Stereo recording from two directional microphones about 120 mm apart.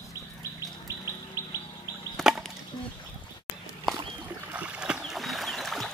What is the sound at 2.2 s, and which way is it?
Wood, 5° right (ahead or behind).